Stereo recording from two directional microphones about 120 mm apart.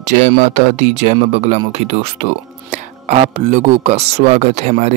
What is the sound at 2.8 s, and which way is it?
Music, 70° right (ahead or behind).